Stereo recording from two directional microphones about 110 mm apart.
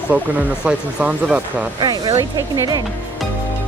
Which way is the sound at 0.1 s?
15° right (ahead or behind).